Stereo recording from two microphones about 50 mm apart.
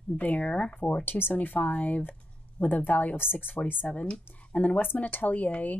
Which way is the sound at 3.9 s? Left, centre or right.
Left.